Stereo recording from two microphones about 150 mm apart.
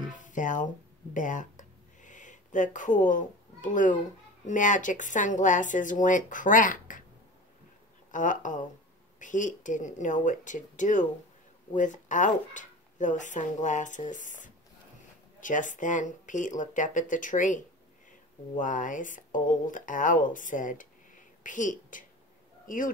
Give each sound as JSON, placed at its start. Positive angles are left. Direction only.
{"t": 0.0, "sound": "music", "side_deg": 60}
{"t": 1.1, "sound": "a sound", "side_deg": 60}
{"t": 4.5, "sound": "speech", "side_deg": 60}
{"t": 8.1, "sound": "speech", "side_deg": 60}
{"t": 18.6, "sound": "speech", "side_deg": 60}